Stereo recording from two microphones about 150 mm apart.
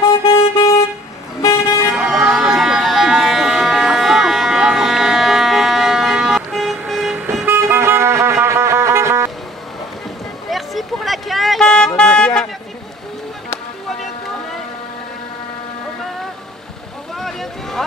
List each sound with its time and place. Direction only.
0.2 s vehicle: 40° left (ahead or behind)
1.4 s vehicle: 20° left (ahead or behind)
1.9 s a sound: 5° right (ahead or behind)
7.4 s music: 15° right (ahead or behind)
10.5 s vehicle: centre (ahead or behind)
17.1 s boat: centre (ahead or behind)